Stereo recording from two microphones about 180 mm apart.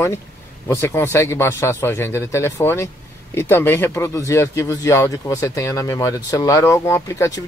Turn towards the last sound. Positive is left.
turn(degrees=15)  # may be behind; listen again after turning